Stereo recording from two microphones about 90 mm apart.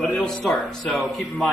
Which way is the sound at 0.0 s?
5° left (ahead or behind).